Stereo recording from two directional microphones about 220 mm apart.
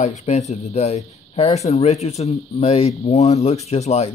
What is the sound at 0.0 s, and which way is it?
Speech, 30° left (ahead or behind).